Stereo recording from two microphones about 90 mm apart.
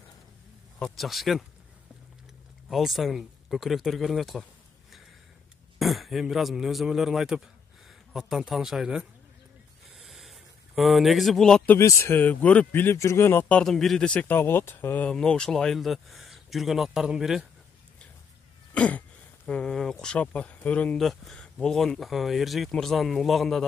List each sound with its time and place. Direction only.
0.7 s speech: 5° left (ahead or behind)
2.7 s speech: centre (ahead or behind)
5.8 s speech: centre (ahead or behind)
9.9 s a sound: centre (ahead or behind)
11.8 s speech: 30° left (ahead or behind)
12.2 s a man's voice: 20° left (ahead or behind)
13.3 s a man's voice: 20° left (ahead or behind)
13.6 s speech: 5° left (ahead or behind)
14.3 s a man's voice: 25° left (ahead or behind)
15.0 s speech: 10° left (ahead or behind)
18.7 s speech: 15° left (ahead or behind)
21.0 s speech: centre (ahead or behind)